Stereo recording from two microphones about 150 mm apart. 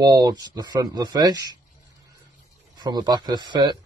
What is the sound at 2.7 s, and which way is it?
Speech, 25° right (ahead or behind).